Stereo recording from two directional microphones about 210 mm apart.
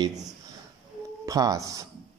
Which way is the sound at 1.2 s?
15° right (ahead or behind).